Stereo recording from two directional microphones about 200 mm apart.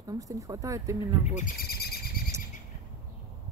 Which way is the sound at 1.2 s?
40° left (ahead or behind).